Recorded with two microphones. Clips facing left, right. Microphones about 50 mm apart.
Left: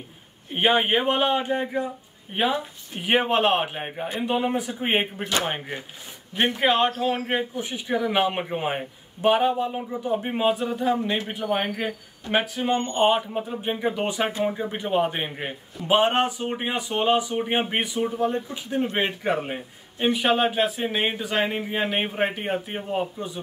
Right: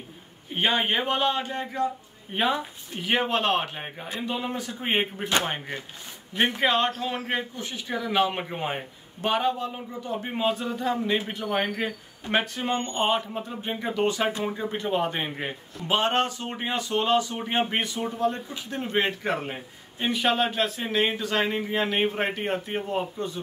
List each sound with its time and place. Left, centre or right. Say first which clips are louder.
0.5 s a man's voice: left 4 dB; centre
2.3 s a man's voice: left 1 dB; centre
3.0 s a man's voice: left 4 dB; left
6.3 s a man's voice: left 2 dB; centre